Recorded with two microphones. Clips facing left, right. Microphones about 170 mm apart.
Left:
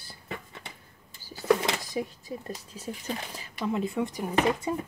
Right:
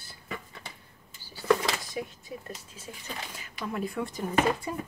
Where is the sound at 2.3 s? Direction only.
35° left (ahead or behind).